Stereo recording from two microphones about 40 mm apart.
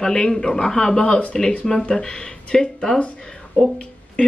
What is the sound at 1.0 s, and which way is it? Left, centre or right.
Speech, left.